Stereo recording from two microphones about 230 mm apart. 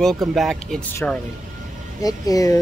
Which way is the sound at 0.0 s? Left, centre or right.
Centre.